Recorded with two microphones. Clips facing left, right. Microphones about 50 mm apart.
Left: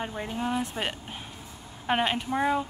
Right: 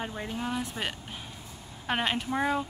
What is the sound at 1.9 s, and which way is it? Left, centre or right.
Speech, centre.